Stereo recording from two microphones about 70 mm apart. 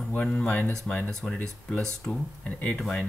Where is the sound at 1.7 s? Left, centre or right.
Centre.